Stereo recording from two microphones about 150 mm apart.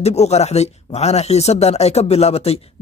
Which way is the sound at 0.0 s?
45° left (ahead or behind).